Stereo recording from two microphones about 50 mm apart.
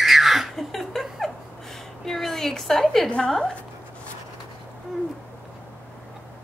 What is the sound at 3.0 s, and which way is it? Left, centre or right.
Speech, centre.